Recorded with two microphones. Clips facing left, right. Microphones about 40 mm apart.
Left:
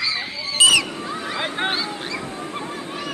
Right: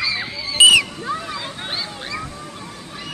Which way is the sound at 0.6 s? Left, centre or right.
Centre.